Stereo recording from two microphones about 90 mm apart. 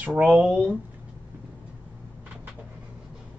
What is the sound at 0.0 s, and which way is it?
Speech, 15° right (ahead or behind).